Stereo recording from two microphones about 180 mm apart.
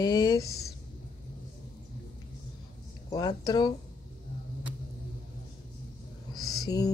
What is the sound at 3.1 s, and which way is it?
Speech, 20° left (ahead or behind).